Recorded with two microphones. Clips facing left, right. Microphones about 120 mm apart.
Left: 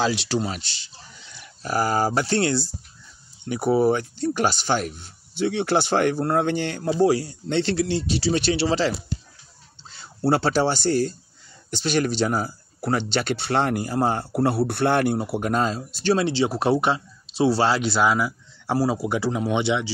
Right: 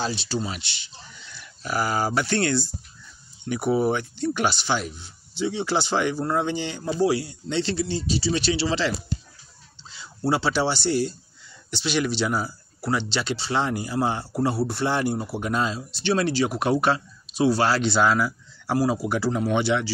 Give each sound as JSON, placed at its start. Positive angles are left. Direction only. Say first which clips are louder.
{"t": 0.0, "sound": "speech", "louder": "left 4 dB", "side_deg": 90}
{"t": 0.5, "sound": "speech", "louder": "left 2 dB", "side_deg": 40}
{"t": 7.4, "sound": "speech", "louder": "left 3 dB", "side_deg": 55}
{"t": 7.7, "sound": "speech", "louder": "left 3 dB", "side_deg": 80}
{"t": 8.3, "sound": "speech", "louder": "left 3 dB", "side_deg": 50}
{"t": 9.8, "sound": "speech", "louder": "left 3 dB", "side_deg": 55}
{"t": 16.2, "sound": "speech", "louder": "left 1 dB", "side_deg": 25}